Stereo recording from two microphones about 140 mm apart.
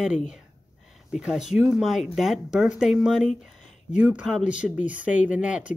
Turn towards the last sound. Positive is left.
turn(degrees=-10)  # may be behind; listen again after turning